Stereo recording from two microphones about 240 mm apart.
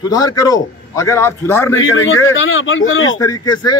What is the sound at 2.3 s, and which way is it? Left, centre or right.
Speech, left.